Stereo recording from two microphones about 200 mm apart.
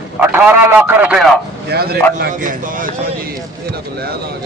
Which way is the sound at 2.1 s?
40° right (ahead or behind).